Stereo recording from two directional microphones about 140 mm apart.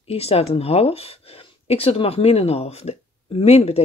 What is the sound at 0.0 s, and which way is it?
Speech, 45° left (ahead or behind).